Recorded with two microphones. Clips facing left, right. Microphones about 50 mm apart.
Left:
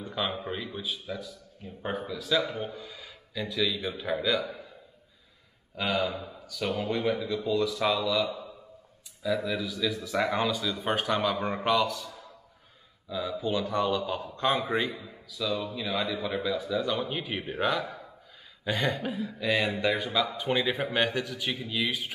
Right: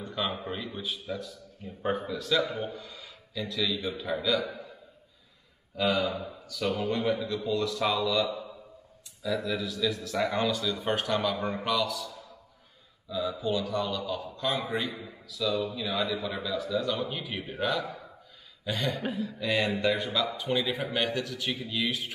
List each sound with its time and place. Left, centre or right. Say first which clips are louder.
0.0 s a man's voice: left 1 dB; centre
5.8 s a man's voice: right 2 dB; centre
11.5 s speech: left 3 dB; left
13.1 s a man's voice: right 1 dB; centre
13.4 s speech: left 4 dB; centre
15.2 s a man's voice: right 2 dB; centre
18.6 s a sound: left 3 dB; centre
18.9 s a man's voice: right 1 dB; centre
20.3 s a man's voice: left 2 dB; left